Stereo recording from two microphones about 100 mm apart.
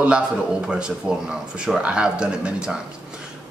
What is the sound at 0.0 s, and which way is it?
Speech, 10° right (ahead or behind).